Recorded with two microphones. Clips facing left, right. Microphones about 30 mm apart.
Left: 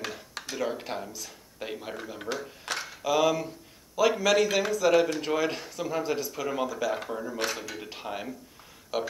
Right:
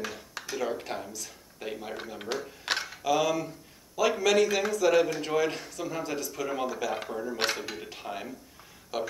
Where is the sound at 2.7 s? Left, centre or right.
Right.